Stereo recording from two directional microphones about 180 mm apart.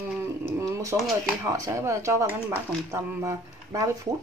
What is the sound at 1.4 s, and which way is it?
Speech, 15° right (ahead or behind).